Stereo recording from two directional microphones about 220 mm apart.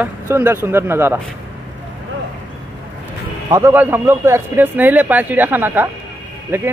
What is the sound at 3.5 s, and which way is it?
Speech, 10° right (ahead or behind).